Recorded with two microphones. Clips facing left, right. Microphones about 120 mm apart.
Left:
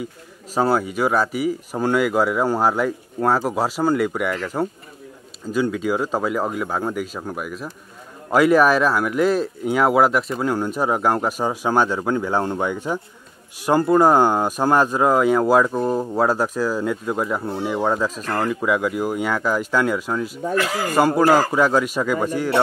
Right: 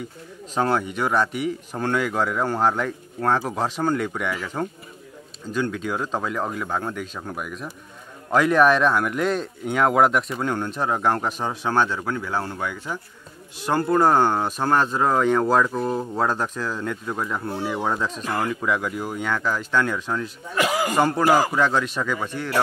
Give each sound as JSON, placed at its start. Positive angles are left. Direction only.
{"t": 0.6, "sound": "speech", "side_deg": 10}
{"t": 5.5, "sound": "speech", "side_deg": 5}
{"t": 20.5, "sound": "speech", "side_deg": -15}
{"t": 21.5, "sound": "speech", "side_deg": 10}